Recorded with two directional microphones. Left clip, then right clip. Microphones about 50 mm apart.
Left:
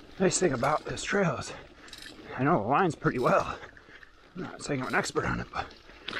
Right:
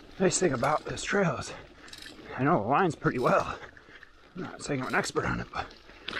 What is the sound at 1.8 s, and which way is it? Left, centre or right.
Mechanisms, right.